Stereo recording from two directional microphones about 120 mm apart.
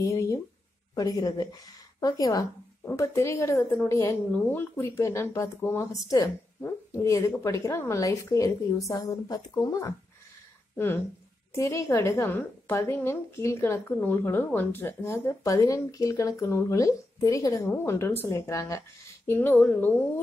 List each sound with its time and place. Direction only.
0.0 s a woman's voice: 25° left (ahead or behind)
11.5 s a woman's voice: 25° left (ahead or behind)